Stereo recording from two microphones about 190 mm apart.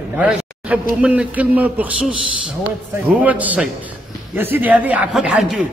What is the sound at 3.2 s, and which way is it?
Speech, 10° right (ahead or behind).